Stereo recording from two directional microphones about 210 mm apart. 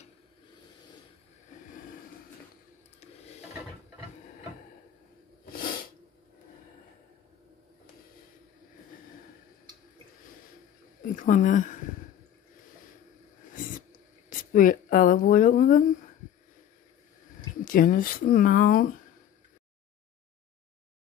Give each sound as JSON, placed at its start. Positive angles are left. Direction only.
{"t": 5.4, "sound": "sneeze", "side_deg": 40}
{"t": 11.1, "sound": "speech", "side_deg": 35}
{"t": 14.5, "sound": "speech", "side_deg": 40}
{"t": 17.6, "sound": "speech", "side_deg": 40}